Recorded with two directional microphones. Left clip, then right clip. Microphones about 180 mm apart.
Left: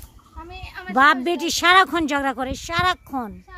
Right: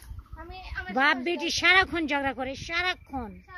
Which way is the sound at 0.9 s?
15° left (ahead or behind).